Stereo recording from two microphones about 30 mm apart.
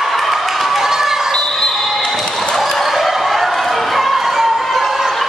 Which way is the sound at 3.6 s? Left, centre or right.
Centre.